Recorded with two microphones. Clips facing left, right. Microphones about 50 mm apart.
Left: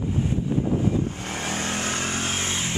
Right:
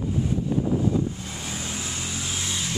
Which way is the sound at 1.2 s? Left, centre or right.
Left.